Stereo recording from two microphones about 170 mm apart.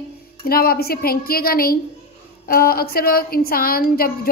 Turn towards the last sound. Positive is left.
turn(degrees=60)  # may be behind; listen again after turning